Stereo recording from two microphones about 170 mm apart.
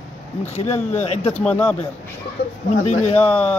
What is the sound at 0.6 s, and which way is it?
Speech, 40° left (ahead or behind).